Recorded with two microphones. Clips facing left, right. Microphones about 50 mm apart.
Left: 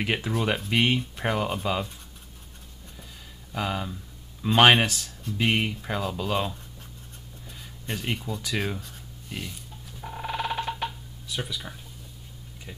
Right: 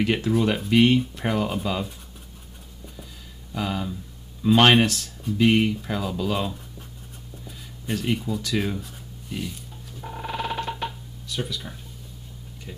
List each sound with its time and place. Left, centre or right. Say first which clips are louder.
0.0 s speech: right 5 dB; centre
3.5 s speech: right 2 dB; centre
9.3 s telephone: right 4 dB; centre
11.2 s speech: right 2 dB; centre